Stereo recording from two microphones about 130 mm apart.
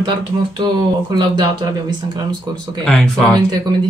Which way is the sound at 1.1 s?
30° right (ahead or behind).